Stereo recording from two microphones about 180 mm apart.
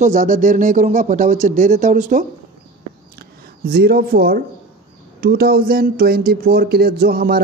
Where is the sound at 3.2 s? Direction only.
60° right (ahead or behind).